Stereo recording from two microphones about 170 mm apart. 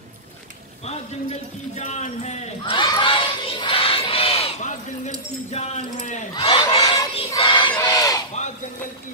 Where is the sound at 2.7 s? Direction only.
30° left (ahead or behind).